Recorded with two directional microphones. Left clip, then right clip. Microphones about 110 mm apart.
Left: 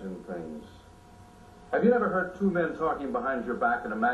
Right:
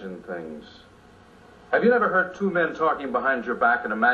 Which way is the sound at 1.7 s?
35° right (ahead or behind).